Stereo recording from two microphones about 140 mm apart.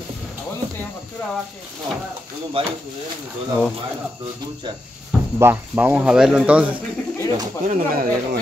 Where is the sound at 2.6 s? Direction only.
40° right (ahead or behind).